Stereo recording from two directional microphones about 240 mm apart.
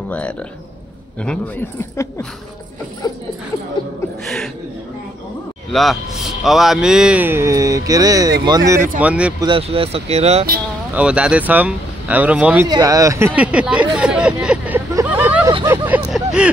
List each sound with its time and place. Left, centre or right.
1.2 s speech: centre
3.0 s a sound: centre
5.7 s a man's voice: centre
9.4 s speech: right
10.9 s speech: centre
12.6 s speech: centre
13.9 s vehicle: centre
15.6 s hubbub: centre